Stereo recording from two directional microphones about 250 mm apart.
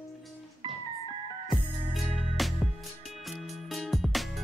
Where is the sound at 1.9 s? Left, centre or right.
Centre.